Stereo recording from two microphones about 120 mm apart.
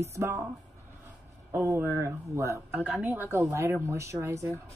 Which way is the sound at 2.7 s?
10° right (ahead or behind).